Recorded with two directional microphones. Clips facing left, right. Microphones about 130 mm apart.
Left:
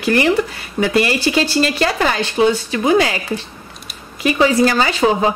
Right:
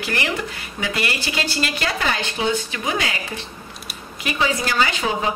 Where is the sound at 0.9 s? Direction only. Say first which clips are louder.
Left 10 dB; 35° left (ahead or behind).